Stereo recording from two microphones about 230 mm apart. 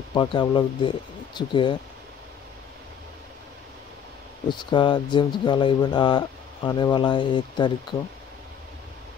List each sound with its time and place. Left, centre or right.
0.1 s speech: centre
4.5 s speech: centre